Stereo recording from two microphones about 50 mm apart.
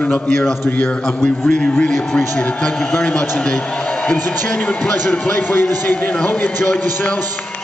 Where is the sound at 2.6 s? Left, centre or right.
Left.